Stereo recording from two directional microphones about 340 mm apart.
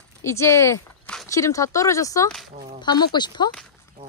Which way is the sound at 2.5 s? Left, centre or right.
Centre.